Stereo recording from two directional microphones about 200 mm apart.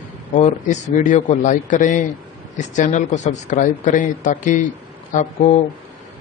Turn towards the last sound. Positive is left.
turn(degrees=35)  # may be behind; listen again after turning